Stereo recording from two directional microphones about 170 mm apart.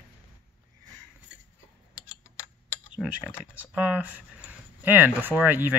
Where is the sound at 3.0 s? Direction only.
5° right (ahead or behind).